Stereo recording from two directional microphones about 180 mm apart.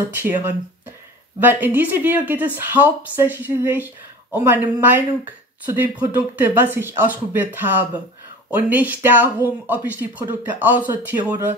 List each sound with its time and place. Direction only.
0.1 s speech: 10° right (ahead or behind)